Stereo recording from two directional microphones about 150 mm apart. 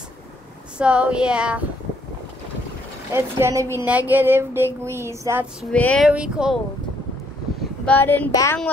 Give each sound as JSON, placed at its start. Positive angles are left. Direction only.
{"t": 0.7, "sound": "speech", "side_deg": -5}
{"t": 3.1, "sound": "speech", "side_deg": -15}
{"t": 5.6, "sound": "child singing", "side_deg": 10}
{"t": 6.0, "sound": "speech", "side_deg": -5}
{"t": 7.8, "sound": "child singing", "side_deg": 10}
{"t": 8.3, "sound": "speech", "side_deg": 25}